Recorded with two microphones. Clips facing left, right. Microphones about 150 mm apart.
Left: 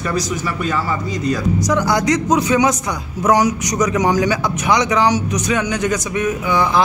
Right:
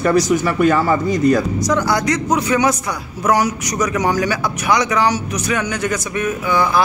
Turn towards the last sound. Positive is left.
turn(degrees=15)  # may be behind; listen again after turning